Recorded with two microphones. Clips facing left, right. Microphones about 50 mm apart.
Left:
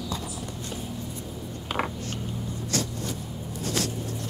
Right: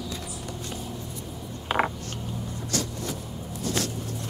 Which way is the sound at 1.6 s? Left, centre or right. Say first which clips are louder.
Right 4 dB; right.